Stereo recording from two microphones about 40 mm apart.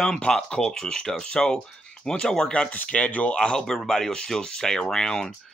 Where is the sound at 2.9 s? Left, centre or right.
Left.